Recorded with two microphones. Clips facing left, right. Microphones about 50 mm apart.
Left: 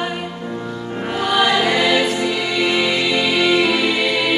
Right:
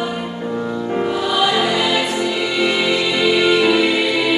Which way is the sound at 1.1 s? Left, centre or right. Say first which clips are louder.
Right 1 dB; left.